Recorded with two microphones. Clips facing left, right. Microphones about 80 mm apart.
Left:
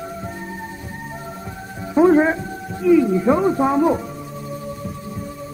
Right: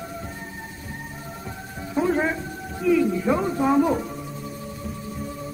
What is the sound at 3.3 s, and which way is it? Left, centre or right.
Speech, left.